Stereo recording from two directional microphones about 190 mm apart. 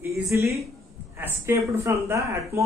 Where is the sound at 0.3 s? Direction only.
15° right (ahead or behind).